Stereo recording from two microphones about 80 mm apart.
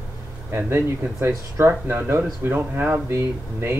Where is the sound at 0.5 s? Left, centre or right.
Right.